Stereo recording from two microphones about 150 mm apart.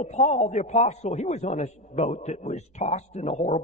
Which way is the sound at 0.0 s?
50° left (ahead or behind).